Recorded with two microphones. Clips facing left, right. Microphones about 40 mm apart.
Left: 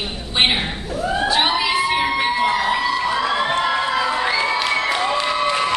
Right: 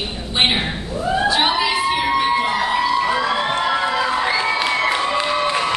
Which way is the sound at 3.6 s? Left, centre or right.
Centre.